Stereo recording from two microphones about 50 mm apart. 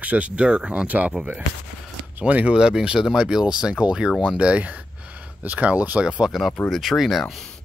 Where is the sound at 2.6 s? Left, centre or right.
Centre; by 6.0 s right.